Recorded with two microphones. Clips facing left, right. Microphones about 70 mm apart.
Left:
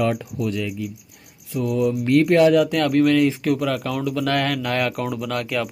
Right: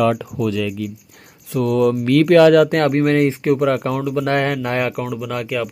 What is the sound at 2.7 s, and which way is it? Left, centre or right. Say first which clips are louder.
Speech: right 2 dB; right.